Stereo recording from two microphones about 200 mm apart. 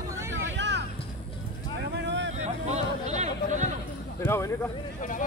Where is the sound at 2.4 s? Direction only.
35° right (ahead or behind).